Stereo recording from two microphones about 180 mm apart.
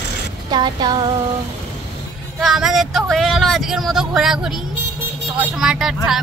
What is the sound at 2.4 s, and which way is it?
Speech, centre (ahead or behind).